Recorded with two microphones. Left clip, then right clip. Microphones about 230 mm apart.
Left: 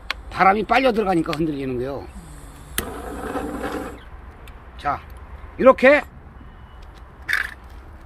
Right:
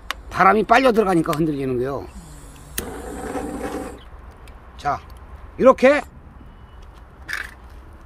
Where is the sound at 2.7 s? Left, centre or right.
Centre.